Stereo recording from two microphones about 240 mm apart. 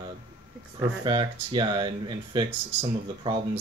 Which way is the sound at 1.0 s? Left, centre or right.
Centre.